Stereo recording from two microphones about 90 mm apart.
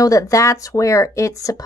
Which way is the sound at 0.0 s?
40° left (ahead or behind).